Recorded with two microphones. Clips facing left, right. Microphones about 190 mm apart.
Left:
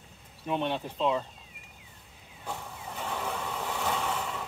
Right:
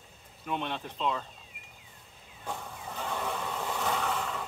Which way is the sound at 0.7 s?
10° left (ahead or behind).